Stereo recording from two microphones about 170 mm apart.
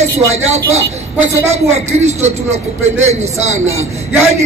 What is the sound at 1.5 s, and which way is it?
Speech, 40° right (ahead or behind).